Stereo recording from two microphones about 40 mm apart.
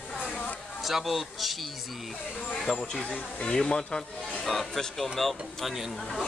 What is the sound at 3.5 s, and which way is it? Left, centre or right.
Speech, centre.